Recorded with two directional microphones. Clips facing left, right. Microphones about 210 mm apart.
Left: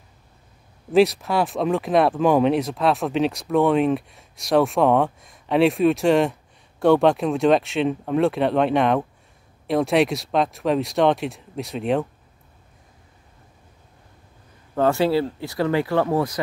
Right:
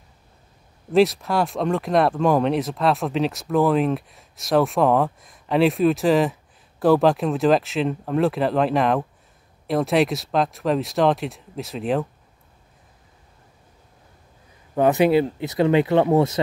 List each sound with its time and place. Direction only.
0.9 s speech: centre (ahead or behind)
14.8 s speech: 20° right (ahead or behind)